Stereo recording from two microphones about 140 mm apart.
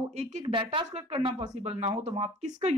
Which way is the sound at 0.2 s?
55° right (ahead or behind).